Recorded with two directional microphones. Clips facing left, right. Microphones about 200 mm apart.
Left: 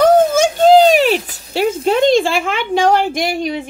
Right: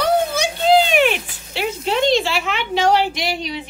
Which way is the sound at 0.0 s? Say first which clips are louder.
Left 8 dB; 45° left (ahead or behind).